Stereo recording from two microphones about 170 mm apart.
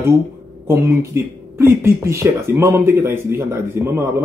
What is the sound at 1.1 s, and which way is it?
A man's voice, 15° right (ahead or behind).